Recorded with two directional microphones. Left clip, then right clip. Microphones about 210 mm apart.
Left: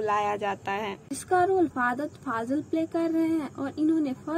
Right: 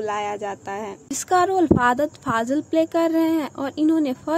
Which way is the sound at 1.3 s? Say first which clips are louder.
Right 6 dB; 30° right (ahead or behind).